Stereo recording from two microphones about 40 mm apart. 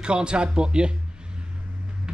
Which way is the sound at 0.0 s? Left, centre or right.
Right.